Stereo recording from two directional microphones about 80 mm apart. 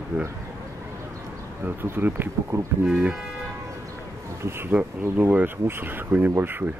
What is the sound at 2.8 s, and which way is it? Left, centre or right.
Speech, centre.